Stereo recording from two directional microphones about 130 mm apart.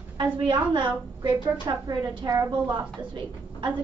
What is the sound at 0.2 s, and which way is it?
A woman's voice, 40° right (ahead or behind).